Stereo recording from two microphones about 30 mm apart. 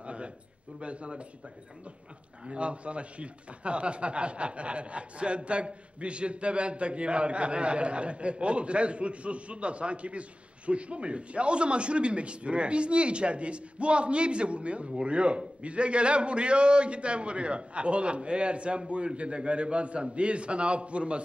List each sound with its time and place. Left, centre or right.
0.0 s a sound: right
0.7 s speech: right
2.4 s speech: right